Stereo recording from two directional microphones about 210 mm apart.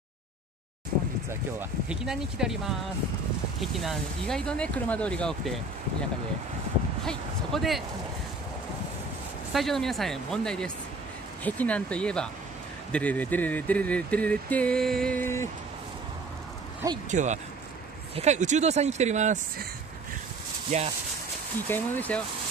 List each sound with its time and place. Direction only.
1.3 s speech: 10° right (ahead or behind)
3.7 s speech: centre (ahead or behind)
7.1 s speech: centre (ahead or behind)
9.5 s speech: centre (ahead or behind)
12.9 s a sound: 5° left (ahead or behind)
17.1 s speech: 35° right (ahead or behind)
20.7 s speech: 30° right (ahead or behind)
21.6 s a sound: 10° left (ahead or behind)